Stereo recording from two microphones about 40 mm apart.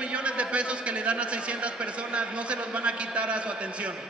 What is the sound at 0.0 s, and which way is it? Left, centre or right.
A man's voice, right.